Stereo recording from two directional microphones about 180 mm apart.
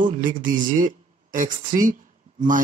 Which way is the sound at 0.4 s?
45° right (ahead or behind).